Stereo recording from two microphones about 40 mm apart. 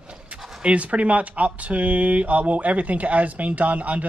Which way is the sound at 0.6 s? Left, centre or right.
Right.